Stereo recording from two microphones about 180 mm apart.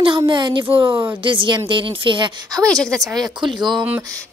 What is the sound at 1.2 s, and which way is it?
Speech, 25° right (ahead or behind).